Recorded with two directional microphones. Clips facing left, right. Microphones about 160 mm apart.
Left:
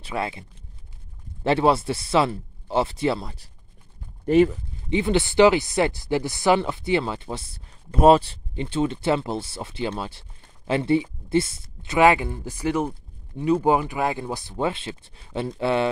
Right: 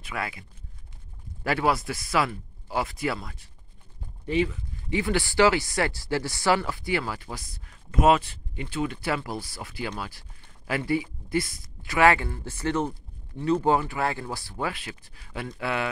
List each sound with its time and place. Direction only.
0.0 s speech: 25° left (ahead or behind)
4.3 s speech: 50° left (ahead or behind)
4.8 s speech: 20° left (ahead or behind)